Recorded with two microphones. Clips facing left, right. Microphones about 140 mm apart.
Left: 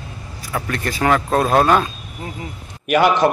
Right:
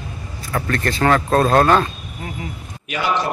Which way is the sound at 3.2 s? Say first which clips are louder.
Left 8 dB; 55° left (ahead or behind).